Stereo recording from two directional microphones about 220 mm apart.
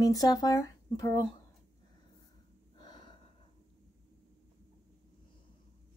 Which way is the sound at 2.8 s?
20° left (ahead or behind).